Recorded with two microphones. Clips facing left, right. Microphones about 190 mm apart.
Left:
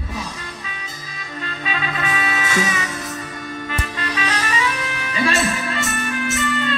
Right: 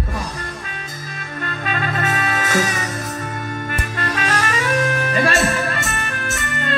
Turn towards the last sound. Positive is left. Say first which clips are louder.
# left 4 dB
turn(degrees=-50)  # may be behind; listen again after turning